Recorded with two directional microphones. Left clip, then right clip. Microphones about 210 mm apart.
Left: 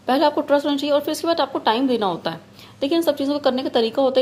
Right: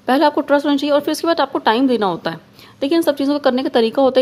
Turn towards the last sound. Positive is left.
turn(degrees=-30)  # may be behind; listen again after turning